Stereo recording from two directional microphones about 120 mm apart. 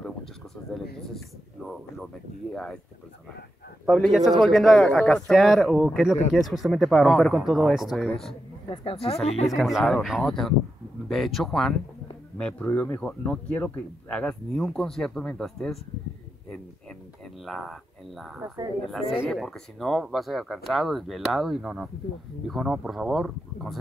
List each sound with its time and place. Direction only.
1.1 s speech: centre (ahead or behind)
3.8 s speech: centre (ahead or behind)
8.6 s speech: 50° left (ahead or behind)
9.5 s speech: centre (ahead or behind)
17.5 s speech: centre (ahead or behind)